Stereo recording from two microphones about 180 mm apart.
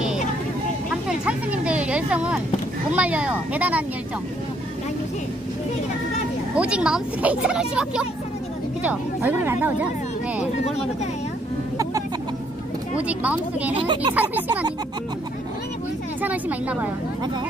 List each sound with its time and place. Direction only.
1.0 s a sound: 5° right (ahead or behind)
2.9 s speech: 5° right (ahead or behind)
6.5 s speech: 5° right (ahead or behind)
12.9 s speech: 5° right (ahead or behind)
13.7 s speech: 25° right (ahead or behind)
14.1 s speech: 10° right (ahead or behind)
16.2 s speech: 10° right (ahead or behind)